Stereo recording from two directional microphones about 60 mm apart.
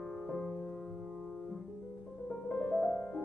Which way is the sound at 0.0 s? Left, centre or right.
Centre.